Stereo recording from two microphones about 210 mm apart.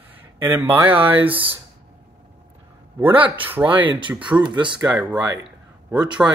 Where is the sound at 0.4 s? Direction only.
10° right (ahead or behind).